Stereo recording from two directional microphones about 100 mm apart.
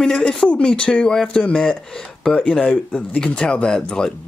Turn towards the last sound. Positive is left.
turn(degrees=10)  # may be behind; listen again after turning